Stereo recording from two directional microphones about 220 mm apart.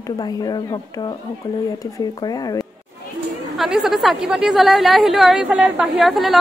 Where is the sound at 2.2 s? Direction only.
15° left (ahead or behind).